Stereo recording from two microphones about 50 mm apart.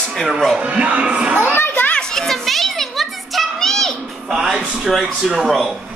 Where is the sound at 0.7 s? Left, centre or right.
Right.